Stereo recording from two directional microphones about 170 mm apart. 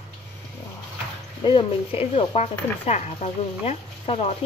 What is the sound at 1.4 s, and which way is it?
Speech, 25° left (ahead or behind).